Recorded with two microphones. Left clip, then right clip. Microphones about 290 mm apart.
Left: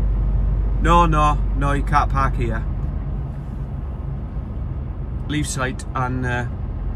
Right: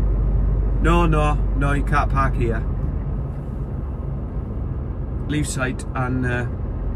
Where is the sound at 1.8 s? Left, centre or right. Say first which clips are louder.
Left 3 dB; right.